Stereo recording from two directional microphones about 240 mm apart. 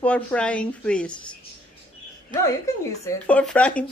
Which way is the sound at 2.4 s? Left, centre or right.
Centre.